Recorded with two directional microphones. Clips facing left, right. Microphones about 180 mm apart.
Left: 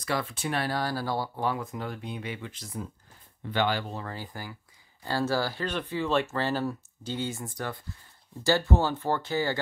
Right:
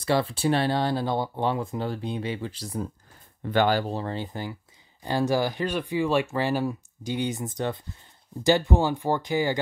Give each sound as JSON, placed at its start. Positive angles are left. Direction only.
{"t": 0.0, "sound": "speech", "side_deg": -30}